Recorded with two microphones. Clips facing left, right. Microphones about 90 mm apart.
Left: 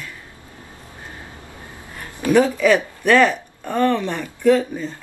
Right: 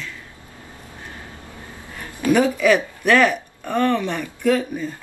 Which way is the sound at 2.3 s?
10° right (ahead or behind).